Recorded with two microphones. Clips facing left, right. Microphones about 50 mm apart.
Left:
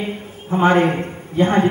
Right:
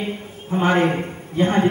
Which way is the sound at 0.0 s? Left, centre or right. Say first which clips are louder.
Left 1 dB; centre.